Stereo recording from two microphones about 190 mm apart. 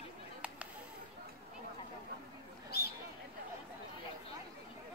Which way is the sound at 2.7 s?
55° left (ahead or behind).